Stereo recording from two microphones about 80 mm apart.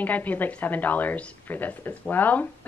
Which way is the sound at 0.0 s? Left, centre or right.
Left.